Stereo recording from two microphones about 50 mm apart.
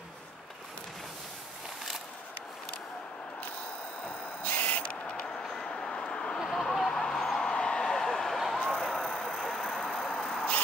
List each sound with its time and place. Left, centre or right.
4.0 s owl: left
5.6 s vehicle: centre
6.4 s a sound: centre
8.5 s vehicle: centre